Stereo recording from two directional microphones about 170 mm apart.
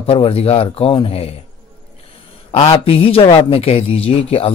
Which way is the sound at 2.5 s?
30° left (ahead or behind).